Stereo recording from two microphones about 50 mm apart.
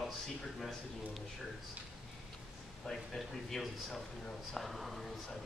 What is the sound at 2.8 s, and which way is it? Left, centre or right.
A man's voice, centre.